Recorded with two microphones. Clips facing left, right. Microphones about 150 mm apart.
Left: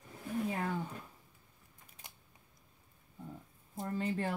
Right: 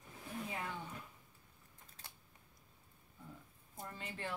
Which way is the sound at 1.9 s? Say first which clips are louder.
Left 2 dB; 15° left (ahead or behind).